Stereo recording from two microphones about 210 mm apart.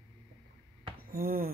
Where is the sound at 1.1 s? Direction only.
45° right (ahead or behind).